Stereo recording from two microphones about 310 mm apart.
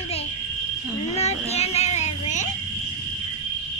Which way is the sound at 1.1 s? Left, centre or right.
Centre.